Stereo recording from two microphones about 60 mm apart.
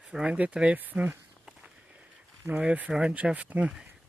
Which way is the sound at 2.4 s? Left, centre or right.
Right.